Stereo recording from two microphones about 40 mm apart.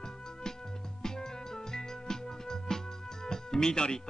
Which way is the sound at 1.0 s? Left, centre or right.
Centre.